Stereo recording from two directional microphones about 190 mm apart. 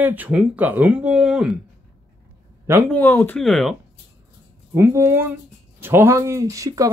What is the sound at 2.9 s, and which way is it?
Speech, 10° left (ahead or behind).